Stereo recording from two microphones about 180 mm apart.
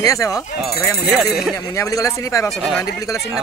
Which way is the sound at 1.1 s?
Centre (ahead or behind).